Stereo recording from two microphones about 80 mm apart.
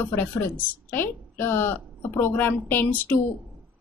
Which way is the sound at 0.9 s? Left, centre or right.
Left.